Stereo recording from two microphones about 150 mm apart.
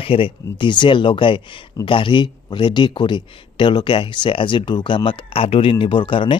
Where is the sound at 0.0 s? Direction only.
35° left (ahead or behind).